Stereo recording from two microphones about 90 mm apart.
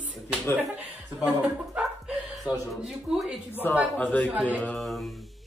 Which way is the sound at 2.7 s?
Centre (ahead or behind).